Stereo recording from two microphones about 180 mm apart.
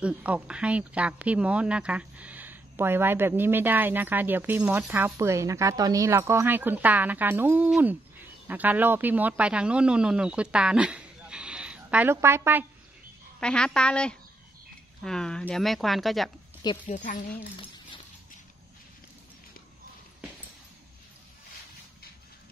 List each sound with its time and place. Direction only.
0.0 s speech: 5° right (ahead or behind)
13.4 s speech: 5° left (ahead or behind)
16.8 s speech: 45° left (ahead or behind)